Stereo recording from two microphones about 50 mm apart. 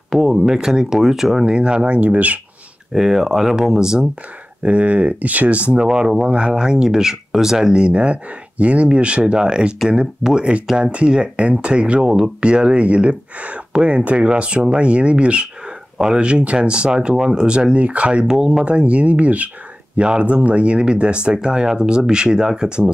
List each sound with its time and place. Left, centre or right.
0.2 s speech: centre
1.4 s speech: centre
2.9 s speech: centre
4.6 s speech: right
5.9 s speech: centre